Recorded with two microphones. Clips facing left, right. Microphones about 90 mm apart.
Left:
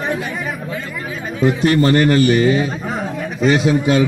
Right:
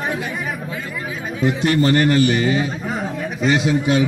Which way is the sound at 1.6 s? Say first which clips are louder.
Left 2 dB; 45° left (ahead or behind).